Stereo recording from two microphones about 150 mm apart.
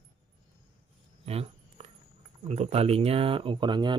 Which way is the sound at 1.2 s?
40° right (ahead or behind).